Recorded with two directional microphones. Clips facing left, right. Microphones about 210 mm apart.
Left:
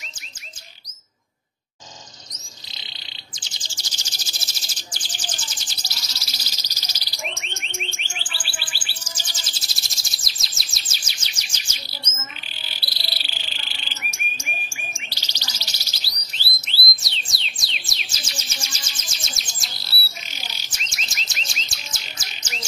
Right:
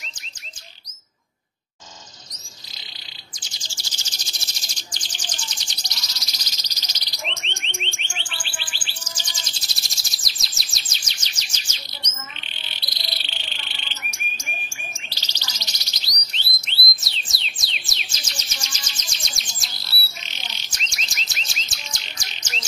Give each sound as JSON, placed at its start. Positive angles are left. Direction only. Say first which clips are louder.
{"t": 3.3, "sound": "chirp", "louder": "even", "side_deg": 20}
{"t": 4.4, "sound": "bird", "louder": "left 1 dB", "side_deg": 5}
{"t": 6.4, "sound": "insect", "louder": "left 1 dB", "side_deg": 10}
{"t": 12.0, "sound": "frog", "louder": "right 1 dB", "side_deg": 5}
{"t": 16.6, "sound": "music", "louder": "left 1 dB", "side_deg": 0}